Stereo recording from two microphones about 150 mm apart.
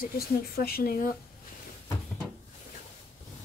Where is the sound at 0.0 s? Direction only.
90° left.